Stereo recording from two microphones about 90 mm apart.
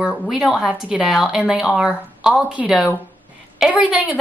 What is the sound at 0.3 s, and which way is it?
Speech, 5° right (ahead or behind).